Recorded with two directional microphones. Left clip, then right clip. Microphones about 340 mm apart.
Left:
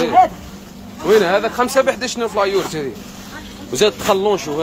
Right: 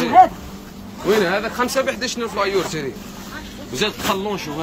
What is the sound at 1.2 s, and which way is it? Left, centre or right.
Speech, centre.